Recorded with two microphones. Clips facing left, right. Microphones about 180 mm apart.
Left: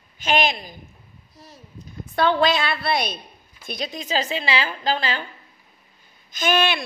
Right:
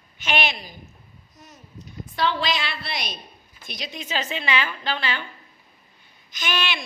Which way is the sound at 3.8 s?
40° left (ahead or behind).